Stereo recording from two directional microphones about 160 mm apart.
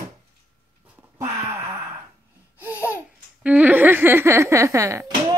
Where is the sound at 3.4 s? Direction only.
10° right (ahead or behind).